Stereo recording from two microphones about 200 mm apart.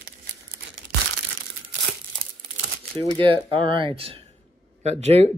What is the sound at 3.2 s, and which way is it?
Speech, 25° right (ahead or behind).